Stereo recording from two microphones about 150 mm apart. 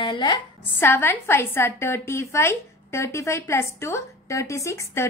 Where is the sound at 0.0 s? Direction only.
30° left (ahead or behind).